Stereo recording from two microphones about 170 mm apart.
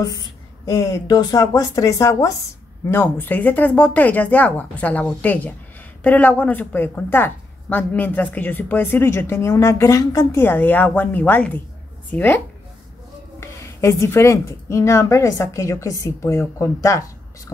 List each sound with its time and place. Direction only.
0.7 s a woman's voice: 20° left (ahead or behind)
13.4 s a woman's voice: 15° left (ahead or behind)